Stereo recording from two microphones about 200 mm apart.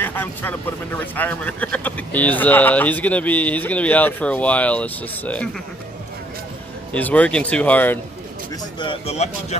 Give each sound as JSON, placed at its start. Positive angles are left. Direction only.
{"t": 0.0, "sound": "speech", "side_deg": 10}
{"t": 6.9, "sound": "speech", "side_deg": 5}
{"t": 8.7, "sound": "speech", "side_deg": 25}